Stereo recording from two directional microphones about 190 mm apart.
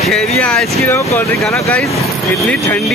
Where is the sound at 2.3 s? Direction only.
Centre (ahead or behind).